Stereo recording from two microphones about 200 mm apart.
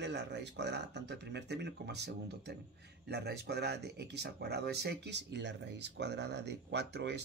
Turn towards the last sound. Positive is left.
turn(degrees=-60)  # may be behind; listen again after turning